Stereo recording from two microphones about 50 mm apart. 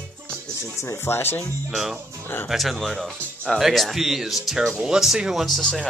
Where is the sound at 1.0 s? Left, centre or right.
Left.